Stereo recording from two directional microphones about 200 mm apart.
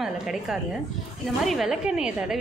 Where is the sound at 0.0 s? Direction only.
Centre (ahead or behind).